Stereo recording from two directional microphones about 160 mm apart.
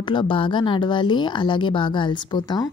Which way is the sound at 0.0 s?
30° left (ahead or behind).